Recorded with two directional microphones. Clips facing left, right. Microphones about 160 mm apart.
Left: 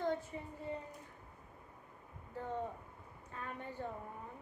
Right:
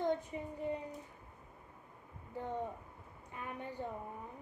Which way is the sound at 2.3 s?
15° right (ahead or behind).